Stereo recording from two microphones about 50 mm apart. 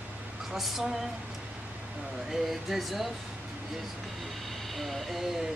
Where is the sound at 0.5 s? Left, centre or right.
Centre.